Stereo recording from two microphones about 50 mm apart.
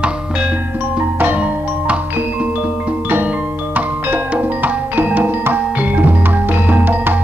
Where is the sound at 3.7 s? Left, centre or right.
Right.